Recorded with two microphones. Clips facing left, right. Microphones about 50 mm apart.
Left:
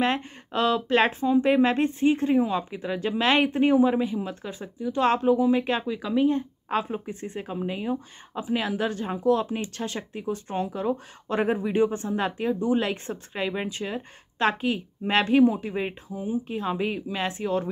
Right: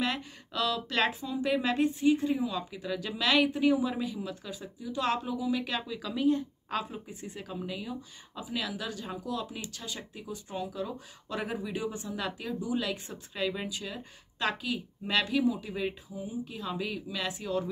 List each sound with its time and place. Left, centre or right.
0.0 s speech: left